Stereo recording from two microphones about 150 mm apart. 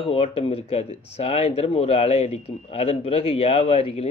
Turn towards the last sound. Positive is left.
turn(degrees=40)  # may be behind; listen again after turning